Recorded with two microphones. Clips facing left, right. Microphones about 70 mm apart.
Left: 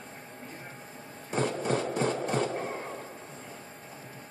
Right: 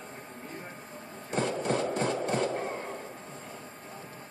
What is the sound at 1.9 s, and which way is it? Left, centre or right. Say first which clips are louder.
Music: left 1 dB; centre.